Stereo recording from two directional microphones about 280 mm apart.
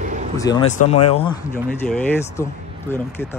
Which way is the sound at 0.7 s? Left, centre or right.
Left.